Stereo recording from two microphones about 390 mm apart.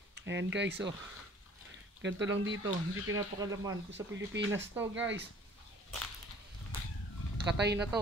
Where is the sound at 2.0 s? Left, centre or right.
Right.